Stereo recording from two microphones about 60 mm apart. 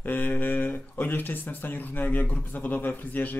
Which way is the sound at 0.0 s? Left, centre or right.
Left.